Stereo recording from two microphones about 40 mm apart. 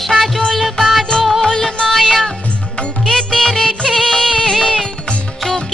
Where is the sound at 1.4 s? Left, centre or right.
Centre.